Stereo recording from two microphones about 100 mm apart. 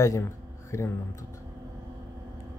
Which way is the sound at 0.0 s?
30° left (ahead or behind).